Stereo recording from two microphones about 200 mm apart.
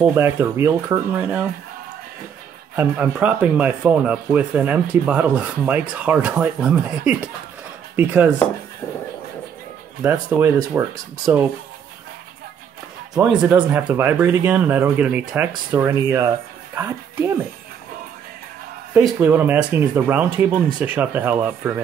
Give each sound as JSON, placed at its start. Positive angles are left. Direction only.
{"t": 0.0, "sound": "speech", "side_deg": -10}
{"t": 2.7, "sound": "speech", "side_deg": -10}
{"t": 7.9, "sound": "chopping", "side_deg": -10}
{"t": 10.0, "sound": "speech", "side_deg": -15}
{"t": 13.1, "sound": "a woman's voice", "side_deg": -5}
{"t": 18.9, "sound": "speech", "side_deg": -10}